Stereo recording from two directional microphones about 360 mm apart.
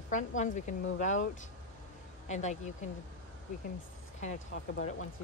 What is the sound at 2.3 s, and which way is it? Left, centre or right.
Speech, centre.